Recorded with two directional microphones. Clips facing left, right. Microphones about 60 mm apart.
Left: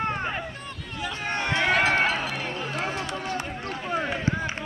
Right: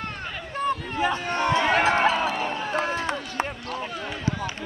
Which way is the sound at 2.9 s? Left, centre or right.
Right.